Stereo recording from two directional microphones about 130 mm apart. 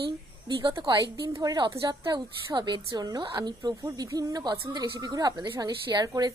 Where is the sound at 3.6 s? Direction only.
25° right (ahead or behind).